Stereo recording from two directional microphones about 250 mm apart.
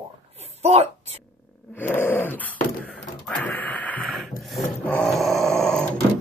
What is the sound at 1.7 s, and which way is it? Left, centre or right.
Dog, centre.